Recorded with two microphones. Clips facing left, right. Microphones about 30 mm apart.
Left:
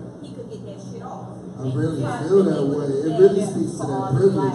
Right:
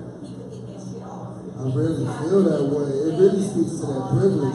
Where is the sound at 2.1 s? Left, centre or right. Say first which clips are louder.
Left 3 dB; centre.